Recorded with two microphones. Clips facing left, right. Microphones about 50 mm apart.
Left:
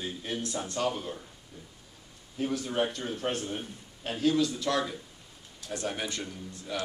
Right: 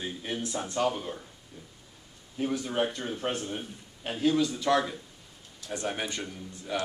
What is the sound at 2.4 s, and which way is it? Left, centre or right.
A man's voice, centre.